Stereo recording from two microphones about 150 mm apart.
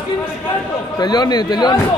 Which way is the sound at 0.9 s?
25° left (ahead or behind).